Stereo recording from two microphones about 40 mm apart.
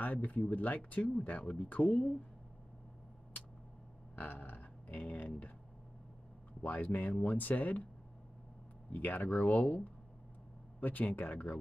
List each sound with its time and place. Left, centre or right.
0.0 s speech: left
4.1 s speech: left
6.6 s speech: left
8.9 s speech: left
10.8 s speech: left